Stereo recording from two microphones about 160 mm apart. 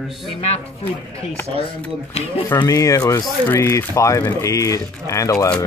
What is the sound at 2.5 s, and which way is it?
Speech, 15° left (ahead or behind).